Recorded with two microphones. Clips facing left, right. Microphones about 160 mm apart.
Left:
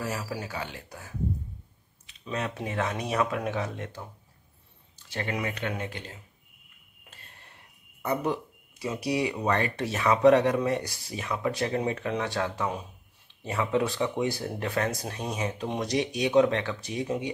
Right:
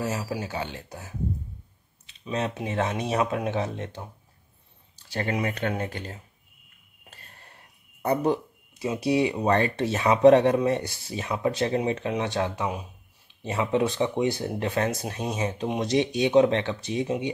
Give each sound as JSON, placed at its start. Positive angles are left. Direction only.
{"t": 0.0, "sound": "speech", "side_deg": -20}
{"t": 2.3, "sound": "speech", "side_deg": -25}
{"t": 8.0, "sound": "a sound", "side_deg": -35}
{"t": 8.8, "sound": "speech", "side_deg": -25}